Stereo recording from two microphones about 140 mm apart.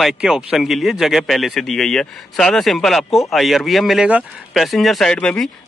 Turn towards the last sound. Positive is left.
turn(degrees=5)  # may be behind; listen again after turning